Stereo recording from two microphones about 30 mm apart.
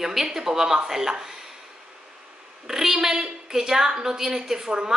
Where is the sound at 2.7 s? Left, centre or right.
Centre.